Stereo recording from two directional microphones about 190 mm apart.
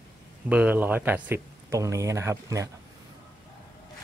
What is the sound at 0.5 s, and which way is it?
Speech, 10° right (ahead or behind).